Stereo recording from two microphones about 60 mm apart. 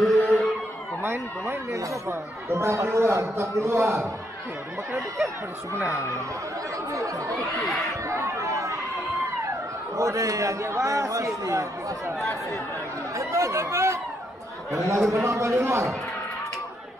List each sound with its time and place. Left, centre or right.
0.0 s a sound: centre
1.0 s a man's voice: right
6.9 s a man's voice: right
8.1 s chatter: right
9.9 s a man's voice: right
13.1 s speech: right
15.1 s a man's voice: right